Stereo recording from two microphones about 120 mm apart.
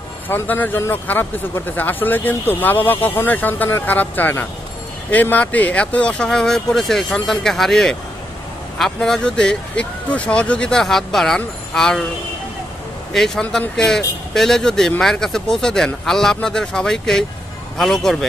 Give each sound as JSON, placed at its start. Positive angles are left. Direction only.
{"t": 0.3, "sound": "speech", "side_deg": 15}
{"t": 13.1, "sound": "speech", "side_deg": 5}